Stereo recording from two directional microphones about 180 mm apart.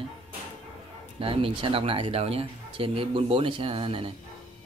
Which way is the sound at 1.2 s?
30° right (ahead or behind).